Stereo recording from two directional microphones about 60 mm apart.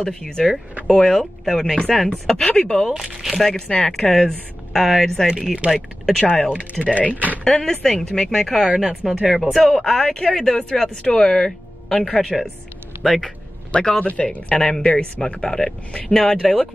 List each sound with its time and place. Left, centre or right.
0.0 s speech: centre
3.0 s speech: centre
3.6 s speech: centre
3.9 s speech: centre
5.6 s speech: centre
6.2 s speech: centre
6.5 s speech: right
7.0 s speech: left
7.6 s speech: centre
9.0 s speech: centre
9.5 s speech: centre
13.7 s a man's voice: centre